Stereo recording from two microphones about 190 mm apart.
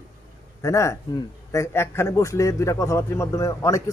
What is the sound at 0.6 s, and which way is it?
Speech, 15° left (ahead or behind).